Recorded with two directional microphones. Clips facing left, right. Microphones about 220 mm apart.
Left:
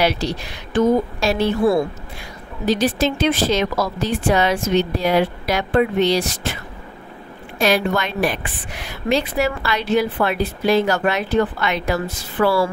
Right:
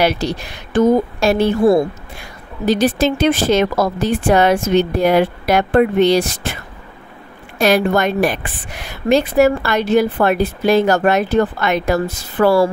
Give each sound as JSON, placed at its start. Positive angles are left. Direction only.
{"t": 0.0, "sound": "a woman's voice", "side_deg": -50}